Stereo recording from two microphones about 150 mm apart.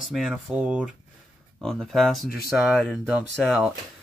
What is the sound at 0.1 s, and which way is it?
Speech, centre (ahead or behind).